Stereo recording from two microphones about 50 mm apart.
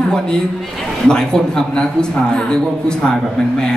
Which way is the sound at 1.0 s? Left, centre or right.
Centre.